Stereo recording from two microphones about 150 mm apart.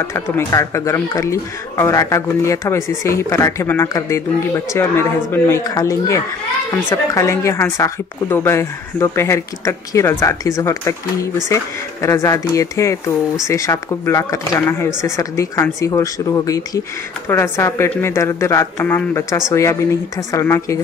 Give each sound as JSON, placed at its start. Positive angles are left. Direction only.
{"t": 0.1, "sound": "speech", "side_deg": 20}